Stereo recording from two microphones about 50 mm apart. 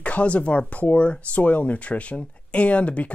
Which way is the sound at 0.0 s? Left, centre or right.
Left.